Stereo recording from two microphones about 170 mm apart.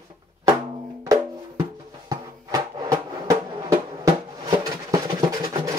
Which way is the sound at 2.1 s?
20° right (ahead or behind).